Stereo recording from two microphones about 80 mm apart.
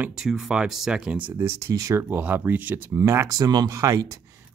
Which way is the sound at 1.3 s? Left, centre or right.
Right.